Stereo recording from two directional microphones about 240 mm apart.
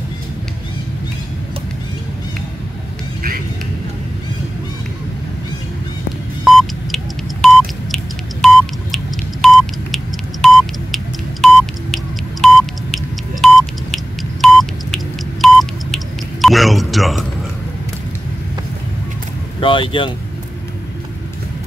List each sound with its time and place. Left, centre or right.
6.4 s telephone dialing: centre
7.4 s a sound: centre
19.6 s vehicle: left